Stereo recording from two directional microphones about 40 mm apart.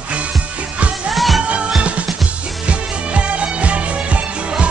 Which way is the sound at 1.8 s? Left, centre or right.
Right.